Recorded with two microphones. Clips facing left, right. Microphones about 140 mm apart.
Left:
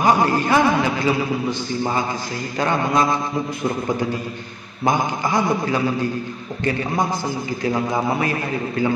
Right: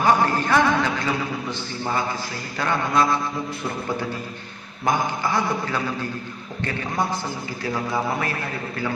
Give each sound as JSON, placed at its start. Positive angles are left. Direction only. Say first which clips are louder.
{"t": 0.0, "sound": "a man's voice", "louder": "left 2 dB", "side_deg": 15}
{"t": 2.6, "sound": "mantra", "louder": "left 2 dB", "side_deg": 20}
{"t": 4.8, "sound": "a man's voice", "louder": "left 3 dB", "side_deg": 15}